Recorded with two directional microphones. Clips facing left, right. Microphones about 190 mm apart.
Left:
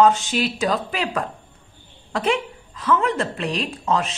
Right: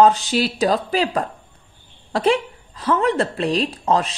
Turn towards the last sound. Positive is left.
turn(degrees=-35)  # may be behind; listen again after turning